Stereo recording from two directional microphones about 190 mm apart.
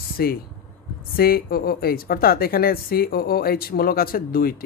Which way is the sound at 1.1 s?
50° left (ahead or behind).